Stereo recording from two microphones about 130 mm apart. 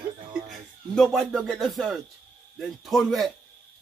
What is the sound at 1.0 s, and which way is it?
Speech, centre (ahead or behind).